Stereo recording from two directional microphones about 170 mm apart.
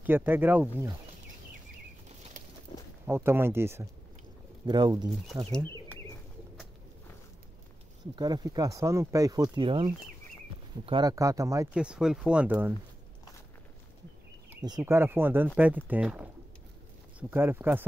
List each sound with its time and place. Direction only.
0.0 s speech: 10° right (ahead or behind)
3.1 s speech: 15° right (ahead or behind)
4.6 s speech: 25° right (ahead or behind)
8.2 s speech: 25° right (ahead or behind)
11.7 s speech: 5° right (ahead or behind)
14.8 s speech: 15° right (ahead or behind)